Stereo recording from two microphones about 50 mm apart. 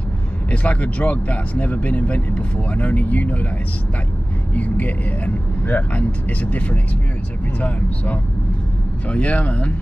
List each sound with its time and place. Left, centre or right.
0.5 s speech: left
4.6 s speech: left